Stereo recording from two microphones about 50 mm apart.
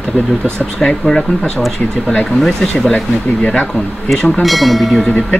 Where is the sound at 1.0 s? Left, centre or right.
Centre.